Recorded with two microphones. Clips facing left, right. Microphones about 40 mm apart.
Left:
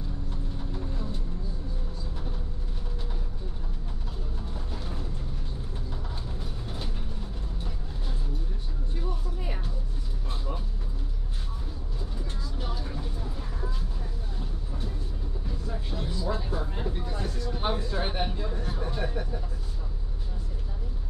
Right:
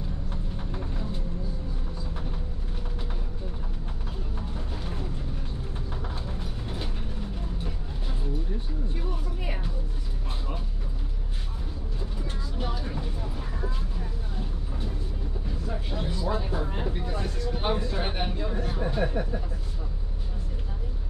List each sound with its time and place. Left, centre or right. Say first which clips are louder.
0.3 s a sound: right 1 dB; right
6.2 s vehicle: right 2 dB; centre
9.1 s music: right 2 dB; right
12.5 s vehicle: right 4 dB; centre
15.6 s vehicle: right 3 dB; centre
16.1 s music: right 2 dB; right
16.6 s vehicle: right 2 dB; right
17.1 s a sound: right 2 dB; centre